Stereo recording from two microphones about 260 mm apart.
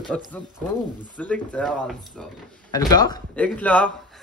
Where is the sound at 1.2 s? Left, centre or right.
Centre.